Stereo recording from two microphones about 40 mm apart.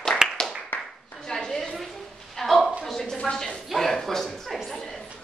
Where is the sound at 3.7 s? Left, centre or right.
Centre.